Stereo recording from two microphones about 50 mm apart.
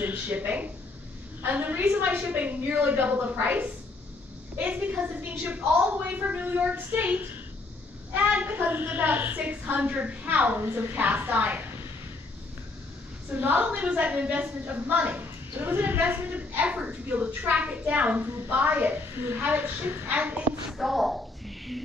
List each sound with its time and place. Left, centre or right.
0.0 s a woman's voice: right
8.1 s a woman's voice: right
13.4 s a woman's voice: right
13.7 s speech: right
15.5 s a woman's voice: right
20.7 s speech: centre